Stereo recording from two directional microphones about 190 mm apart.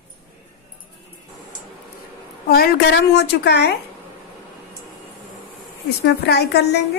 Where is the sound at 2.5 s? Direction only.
50° left (ahead or behind).